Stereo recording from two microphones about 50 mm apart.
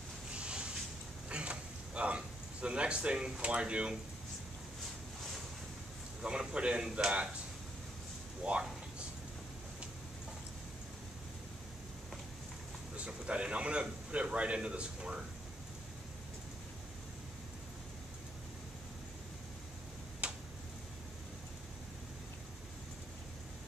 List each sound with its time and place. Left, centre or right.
0.4 s a sound: centre
6.2 s a man's voice: centre
8.5 s a man's voice: centre
12.9 s a man's voice: right
20.2 s tick-tock: right